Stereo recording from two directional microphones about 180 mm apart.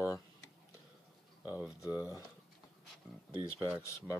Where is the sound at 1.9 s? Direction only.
20° left (ahead or behind).